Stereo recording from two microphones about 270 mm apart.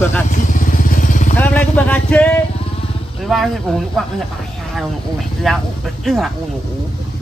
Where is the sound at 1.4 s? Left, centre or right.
Centre.